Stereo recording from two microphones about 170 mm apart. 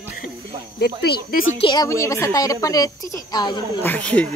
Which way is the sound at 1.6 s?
25° left (ahead or behind).